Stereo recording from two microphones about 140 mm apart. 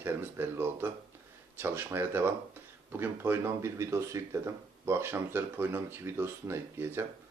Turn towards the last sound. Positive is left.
turn(degrees=-15)  # may be behind; listen again after turning